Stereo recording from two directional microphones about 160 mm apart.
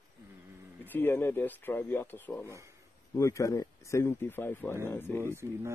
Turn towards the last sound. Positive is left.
turn(degrees=-15)  # may be behind; listen again after turning